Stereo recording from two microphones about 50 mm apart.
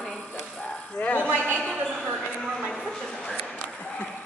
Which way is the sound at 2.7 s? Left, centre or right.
Centre.